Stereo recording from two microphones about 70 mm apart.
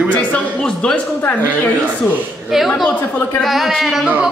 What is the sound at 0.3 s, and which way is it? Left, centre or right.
Speech, centre.